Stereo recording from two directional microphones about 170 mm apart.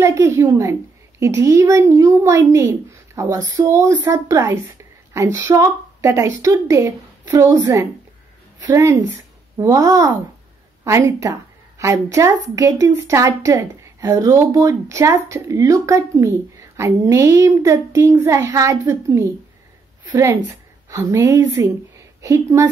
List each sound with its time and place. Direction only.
0.0 s a woman's voice: 15° right (ahead or behind)